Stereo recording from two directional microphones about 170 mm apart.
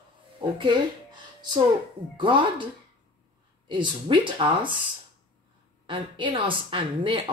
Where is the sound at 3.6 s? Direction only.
25° right (ahead or behind).